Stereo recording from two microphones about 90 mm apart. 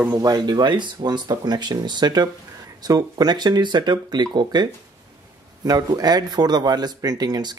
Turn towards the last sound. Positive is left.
turn(degrees=-50)  # may be behind; listen again after turning